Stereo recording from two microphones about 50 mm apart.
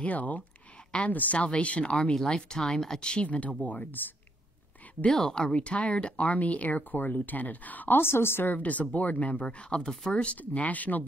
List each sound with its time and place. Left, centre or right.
0.0 s speech: left
5.1 s speech: centre; by 8.0 s left
8.0 s a woman's voice: left
8.5 s speech: left